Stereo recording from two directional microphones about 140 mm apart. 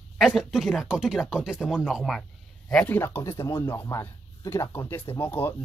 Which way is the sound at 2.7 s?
15° left (ahead or behind).